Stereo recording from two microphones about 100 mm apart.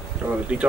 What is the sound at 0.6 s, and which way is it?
Speech, 15° right (ahead or behind).